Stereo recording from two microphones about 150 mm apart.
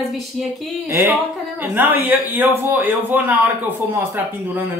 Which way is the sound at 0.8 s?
15° right (ahead or behind).